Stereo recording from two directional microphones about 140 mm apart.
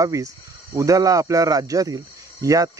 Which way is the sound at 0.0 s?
25° right (ahead or behind).